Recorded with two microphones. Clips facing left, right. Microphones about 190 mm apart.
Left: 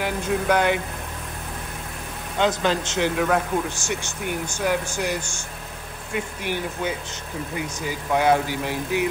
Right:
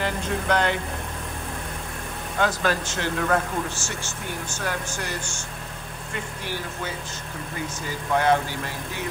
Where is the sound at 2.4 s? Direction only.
20° left (ahead or behind).